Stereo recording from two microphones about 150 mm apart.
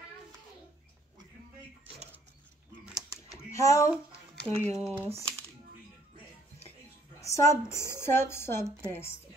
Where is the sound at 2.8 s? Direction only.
Centre (ahead or behind).